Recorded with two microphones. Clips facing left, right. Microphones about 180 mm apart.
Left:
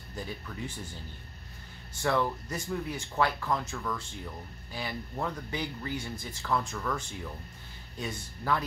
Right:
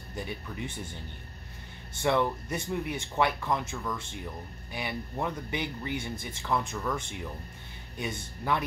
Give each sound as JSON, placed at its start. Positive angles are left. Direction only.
{"t": 0.1, "sound": "speech", "side_deg": -20}
{"t": 2.0, "sound": "speech", "side_deg": -20}